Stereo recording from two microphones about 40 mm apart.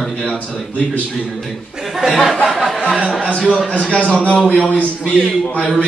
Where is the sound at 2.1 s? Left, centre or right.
Centre.